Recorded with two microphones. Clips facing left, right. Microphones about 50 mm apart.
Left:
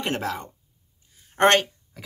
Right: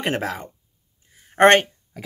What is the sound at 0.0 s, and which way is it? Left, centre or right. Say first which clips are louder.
Speech: right 3 dB; centre.